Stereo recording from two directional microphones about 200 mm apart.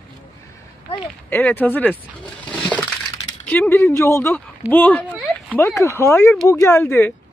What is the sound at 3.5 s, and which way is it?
Speech, 10° left (ahead or behind).